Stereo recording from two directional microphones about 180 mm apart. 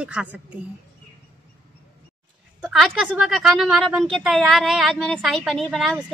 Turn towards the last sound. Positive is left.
turn(degrees=0)  # may be behind; listen again after turning